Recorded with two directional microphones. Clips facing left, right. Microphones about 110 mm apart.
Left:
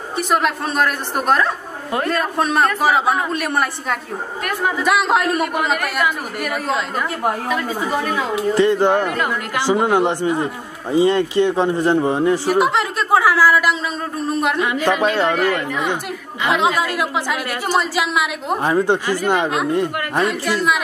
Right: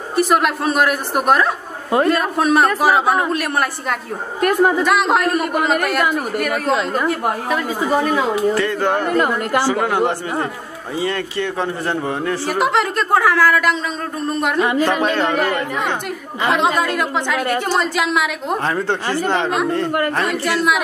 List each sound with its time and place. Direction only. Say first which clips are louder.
0.1 s a man's voice: right 3 dB; centre (ahead or behind)
4.4 s speech: right 8 dB; 40° right (ahead or behind)
4.8 s a man's voice: right 1 dB; centre (ahead or behind)
7.4 s speech: right 2 dB; 35° right (ahead or behind)
8.5 s a man's voice: left 4 dB; 20° left (ahead or behind)
9.0 s speech: right 4 dB; 40° right (ahead or behind)
9.7 s a man's voice: left 6 dB; 20° left (ahead or behind)
12.4 s a man's voice: left 1 dB; centre (ahead or behind)
14.6 s speech: right 4 dB; 35° right (ahead or behind)
16.8 s a man's voice: right 1 dB; 5° left (ahead or behind)
18.6 s speech: left 6 dB; 15° left (ahead or behind)
20.2 s a man's voice: right 1 dB; centre (ahead or behind)